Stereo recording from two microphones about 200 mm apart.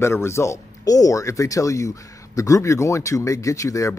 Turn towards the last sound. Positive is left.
turn(degrees=15)  # may be behind; listen again after turning